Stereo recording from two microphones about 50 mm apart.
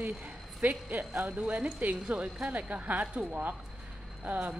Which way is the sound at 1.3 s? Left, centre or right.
Right.